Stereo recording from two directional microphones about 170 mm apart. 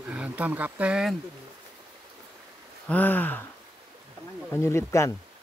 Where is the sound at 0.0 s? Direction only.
10° right (ahead or behind).